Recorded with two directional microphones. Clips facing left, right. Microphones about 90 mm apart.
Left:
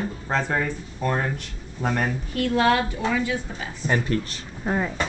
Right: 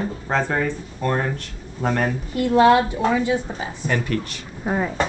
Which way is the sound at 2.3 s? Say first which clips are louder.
Right 6 dB; 20° right (ahead or behind).